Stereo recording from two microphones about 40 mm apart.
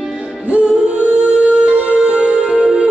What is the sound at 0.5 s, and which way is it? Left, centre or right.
Music, right.